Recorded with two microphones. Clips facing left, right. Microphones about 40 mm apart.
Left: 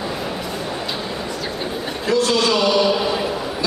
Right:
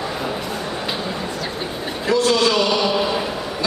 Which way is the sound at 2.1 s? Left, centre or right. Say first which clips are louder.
Right 1 dB; centre.